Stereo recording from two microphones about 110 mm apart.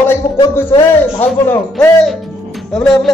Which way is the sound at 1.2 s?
20° left (ahead or behind).